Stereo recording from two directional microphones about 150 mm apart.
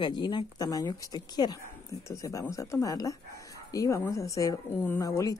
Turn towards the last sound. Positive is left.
turn(degrees=20)  # may be behind; listen again after turning